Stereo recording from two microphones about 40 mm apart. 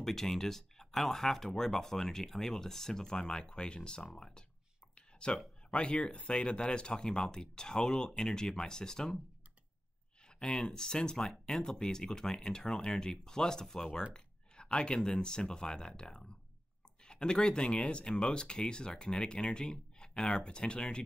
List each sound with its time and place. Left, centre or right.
0.0 s speech: centre
4.9 s a sound: left
5.7 s speech: left
10.2 s speech: left
14.1 s a sound: left
15.0 s speech: centre